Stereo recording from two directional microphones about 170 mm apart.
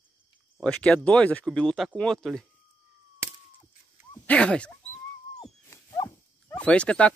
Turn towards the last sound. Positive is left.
turn(degrees=5)  # may be behind; listen again after turning